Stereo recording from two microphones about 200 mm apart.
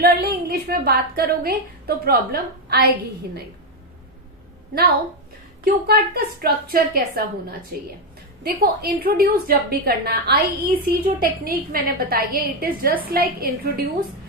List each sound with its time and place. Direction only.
0.0 s a woman's voice: 50° right (ahead or behind)
5.6 s a woman's voice: 50° right (ahead or behind)